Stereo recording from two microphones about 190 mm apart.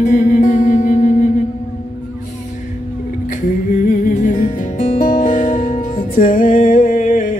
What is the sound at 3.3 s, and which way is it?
Music, 40° left (ahead or behind).